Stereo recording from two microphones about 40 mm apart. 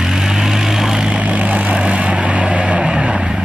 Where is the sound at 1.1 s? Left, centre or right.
Right.